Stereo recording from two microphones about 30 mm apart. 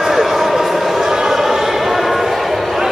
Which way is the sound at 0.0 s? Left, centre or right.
Centre.